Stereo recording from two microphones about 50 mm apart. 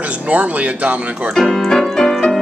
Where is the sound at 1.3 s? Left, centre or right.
Centre.